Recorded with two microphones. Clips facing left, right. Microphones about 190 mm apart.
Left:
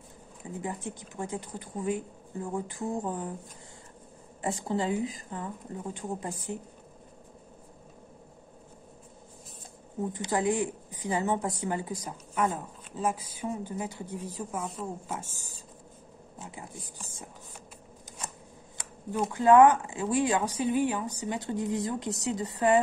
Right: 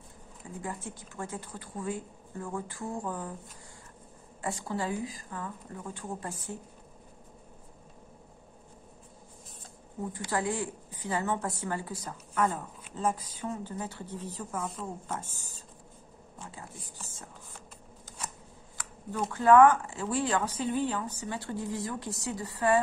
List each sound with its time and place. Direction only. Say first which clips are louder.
0.6 s a woman's voice: left 3 dB; 20° left (ahead or behind)
4.4 s a woman's voice: left 3 dB; 25° left (ahead or behind)
10.1 s speech: left 4 dB; 20° left (ahead or behind)
17.0 s speech: left 2 dB; 15° left (ahead or behind)
18.8 s shuffling cards: right 1 dB; 25° left (ahead or behind)
19.1 s speech: left 1 dB; 15° left (ahead or behind)